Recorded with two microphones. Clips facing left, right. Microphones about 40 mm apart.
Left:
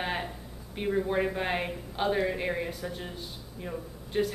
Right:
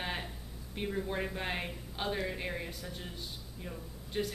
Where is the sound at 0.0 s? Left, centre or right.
Centre.